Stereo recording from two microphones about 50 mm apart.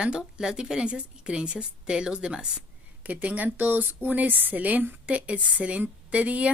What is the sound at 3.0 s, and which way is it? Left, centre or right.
Speech, right.